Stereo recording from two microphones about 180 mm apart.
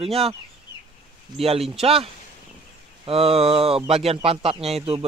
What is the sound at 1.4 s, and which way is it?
Speech, 35° right (ahead or behind).